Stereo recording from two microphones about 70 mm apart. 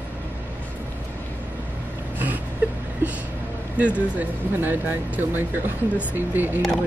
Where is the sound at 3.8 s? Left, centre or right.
Right.